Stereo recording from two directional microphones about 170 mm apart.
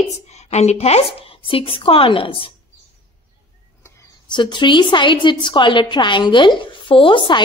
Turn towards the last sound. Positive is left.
turn(degrees=30)  # may be behind; listen again after turning